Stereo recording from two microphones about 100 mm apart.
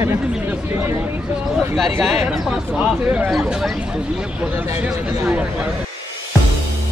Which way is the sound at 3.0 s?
15° right (ahead or behind).